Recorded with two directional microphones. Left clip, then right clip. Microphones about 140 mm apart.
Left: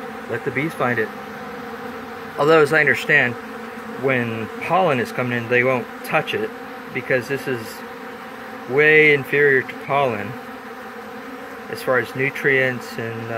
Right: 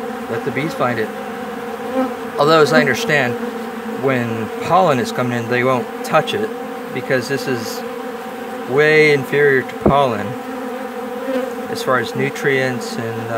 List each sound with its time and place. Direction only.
0.6 s speech: 15° right (ahead or behind)
2.3 s speech: 20° right (ahead or behind)
8.7 s speech: 30° right (ahead or behind)
11.8 s speech: 25° right (ahead or behind)